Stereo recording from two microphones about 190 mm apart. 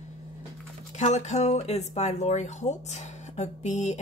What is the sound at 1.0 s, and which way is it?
Speech, 35° left (ahead or behind).